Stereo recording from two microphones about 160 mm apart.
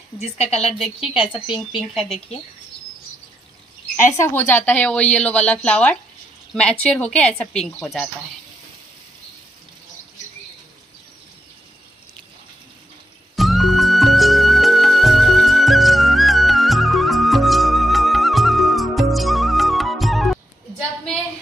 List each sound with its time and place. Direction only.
0.2 s a woman's voice: 40° left (ahead or behind)
0.6 s a woman's voice: centre (ahead or behind)
4.2 s a woman's voice: 15° left (ahead or behind)
13.4 s music: centre (ahead or behind)